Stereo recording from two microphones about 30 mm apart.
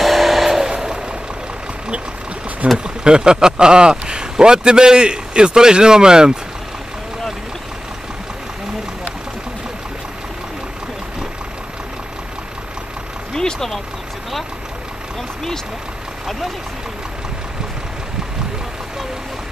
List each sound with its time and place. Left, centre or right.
0.0 s vehicle: centre
0.5 s vehicle: centre
2.8 s speech: right
13.3 s vehicle: left